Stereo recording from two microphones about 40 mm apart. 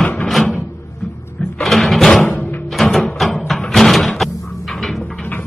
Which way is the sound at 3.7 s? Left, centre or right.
Centre.